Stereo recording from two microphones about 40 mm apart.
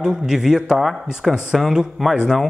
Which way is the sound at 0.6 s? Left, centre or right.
Centre.